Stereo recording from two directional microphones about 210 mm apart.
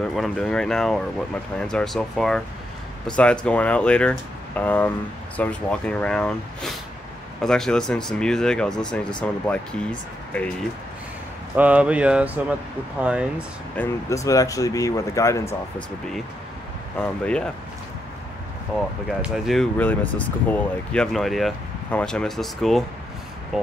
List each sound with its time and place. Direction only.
0.0 s speech: centre (ahead or behind)
11.5 s speech: 5° right (ahead or behind)
13.7 s speech: 15° left (ahead or behind)
17.0 s speech: 5° left (ahead or behind)
19.2 s speech: centre (ahead or behind)